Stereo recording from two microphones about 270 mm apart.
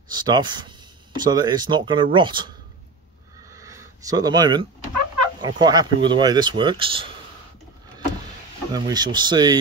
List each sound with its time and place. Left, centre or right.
0.1 s speech: centre
3.4 s a sound: centre
5.4 s speech: centre
8.7 s speech: centre